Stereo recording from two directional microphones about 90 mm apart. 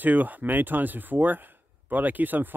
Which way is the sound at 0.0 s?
20° right (ahead or behind).